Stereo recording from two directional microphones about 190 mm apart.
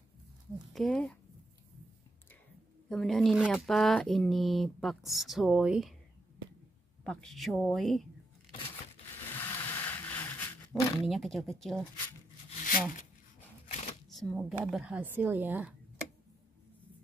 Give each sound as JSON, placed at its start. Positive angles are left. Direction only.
{"t": 0.7, "sound": "speech", "side_deg": 5}
{"t": 2.9, "sound": "speech", "side_deg": 0}
{"t": 7.1, "sound": "speech", "side_deg": 5}
{"t": 9.3, "sound": "vehicle", "side_deg": 15}
{"t": 11.1, "sound": "speech", "side_deg": 0}
{"t": 12.4, "sound": "a sound", "side_deg": 45}
{"t": 14.1, "sound": "a woman's voice", "side_deg": -5}